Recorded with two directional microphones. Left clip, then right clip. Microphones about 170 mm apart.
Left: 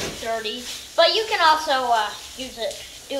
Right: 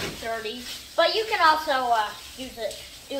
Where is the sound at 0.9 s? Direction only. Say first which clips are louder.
Left 4 dB; 10° left (ahead or behind).